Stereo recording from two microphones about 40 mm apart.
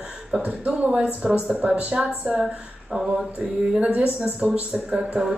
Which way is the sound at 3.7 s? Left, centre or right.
Right.